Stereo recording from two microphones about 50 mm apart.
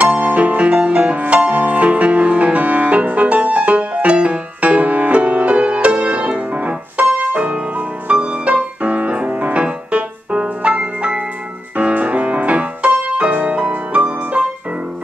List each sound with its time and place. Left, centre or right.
0.0 s music: right